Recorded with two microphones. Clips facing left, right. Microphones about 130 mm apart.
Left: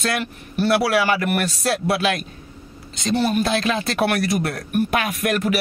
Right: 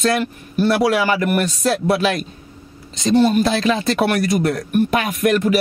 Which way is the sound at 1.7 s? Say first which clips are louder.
Right 3 dB; 40° right (ahead or behind).